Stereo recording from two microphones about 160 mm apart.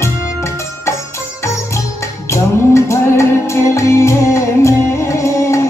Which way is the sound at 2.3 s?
15° left (ahead or behind).